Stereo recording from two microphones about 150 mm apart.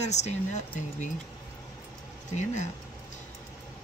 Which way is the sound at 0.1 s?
50° left (ahead or behind).